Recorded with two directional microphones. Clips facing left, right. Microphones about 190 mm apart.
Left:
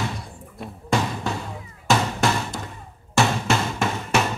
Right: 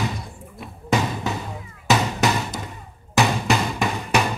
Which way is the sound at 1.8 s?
Centre (ahead or behind).